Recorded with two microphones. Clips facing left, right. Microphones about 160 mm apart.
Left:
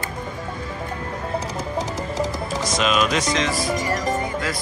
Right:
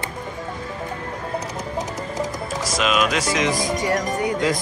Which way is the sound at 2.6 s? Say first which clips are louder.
Even; centre (ahead or behind).